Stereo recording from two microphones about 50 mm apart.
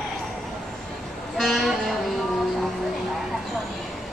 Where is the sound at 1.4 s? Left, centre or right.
Centre.